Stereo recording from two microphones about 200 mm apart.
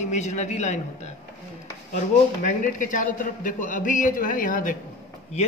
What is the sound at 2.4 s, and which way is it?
A man's voice, 40° left (ahead or behind).